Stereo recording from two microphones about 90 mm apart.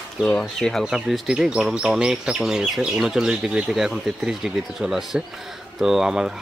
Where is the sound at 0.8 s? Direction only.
5° right (ahead or behind).